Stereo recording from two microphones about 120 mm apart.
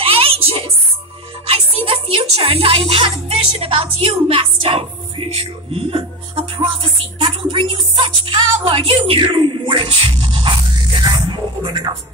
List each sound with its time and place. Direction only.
0.0 s music: 50° right (ahead or behind)